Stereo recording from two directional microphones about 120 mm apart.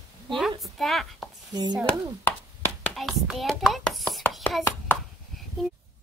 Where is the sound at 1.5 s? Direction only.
35° right (ahead or behind).